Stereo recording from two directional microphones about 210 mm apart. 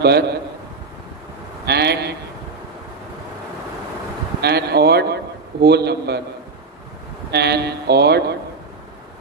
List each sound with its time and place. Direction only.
0.0 s speech: 50° right (ahead or behind)
1.7 s speech: 50° right (ahead or behind)
4.4 s a man's voice: 50° right (ahead or behind)
7.2 s speech: 50° right (ahead or behind)